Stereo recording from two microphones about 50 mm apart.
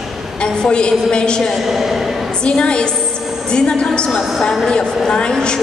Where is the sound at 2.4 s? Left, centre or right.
Left.